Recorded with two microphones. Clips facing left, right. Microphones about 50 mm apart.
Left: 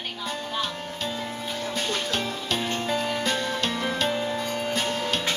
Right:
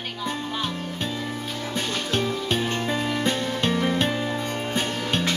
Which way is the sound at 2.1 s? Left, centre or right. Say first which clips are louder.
Right 3 dB; right.